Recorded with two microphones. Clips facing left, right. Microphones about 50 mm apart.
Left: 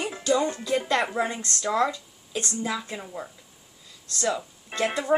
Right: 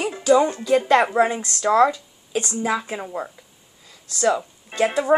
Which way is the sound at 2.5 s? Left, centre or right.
Right.